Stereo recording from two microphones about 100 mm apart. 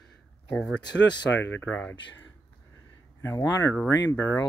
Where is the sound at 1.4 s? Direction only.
20° left (ahead or behind).